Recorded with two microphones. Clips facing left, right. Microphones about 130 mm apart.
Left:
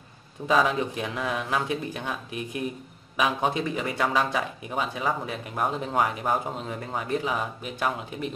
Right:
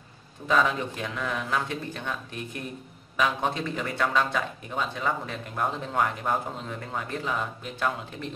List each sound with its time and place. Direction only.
0.5 s speech: 15° left (ahead or behind)